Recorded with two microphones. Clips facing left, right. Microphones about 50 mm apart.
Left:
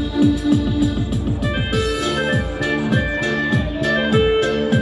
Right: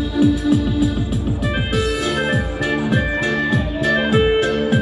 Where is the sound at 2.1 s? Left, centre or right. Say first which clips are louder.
Even; centre.